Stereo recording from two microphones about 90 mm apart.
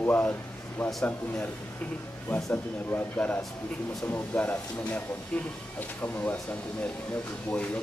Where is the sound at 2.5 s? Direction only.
20° left (ahead or behind).